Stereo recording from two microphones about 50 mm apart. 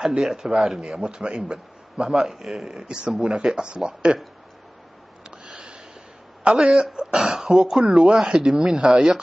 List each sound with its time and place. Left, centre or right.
0.0 s a man's voice: centre
2.1 s a man's voice: centre
5.4 s a sound: centre
6.4 s a man's voice: right
7.2 s a man's voice: centre